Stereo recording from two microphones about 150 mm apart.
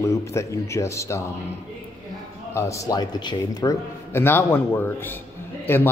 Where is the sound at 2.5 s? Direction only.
20° left (ahead or behind).